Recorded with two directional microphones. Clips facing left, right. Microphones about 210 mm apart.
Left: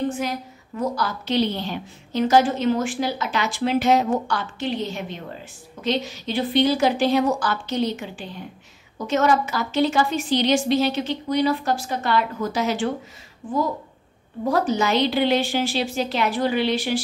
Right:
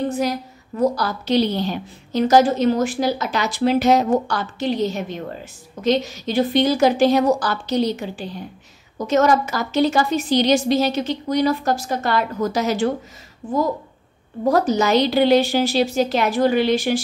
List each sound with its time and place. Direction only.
0.7 s a woman's voice: 35° right (ahead or behind)
14.5 s a woman's voice: 40° right (ahead or behind)